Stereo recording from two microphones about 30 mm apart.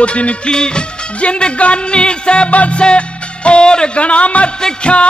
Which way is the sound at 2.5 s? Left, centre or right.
Left.